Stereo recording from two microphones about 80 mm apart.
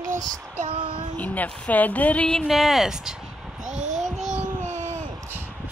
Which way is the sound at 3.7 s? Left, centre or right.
Centre.